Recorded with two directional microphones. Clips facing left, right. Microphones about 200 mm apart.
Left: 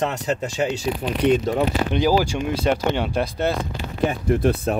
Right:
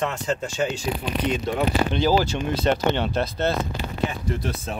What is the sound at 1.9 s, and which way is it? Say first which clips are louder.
Speech: left 2 dB; 10° left (ahead or behind).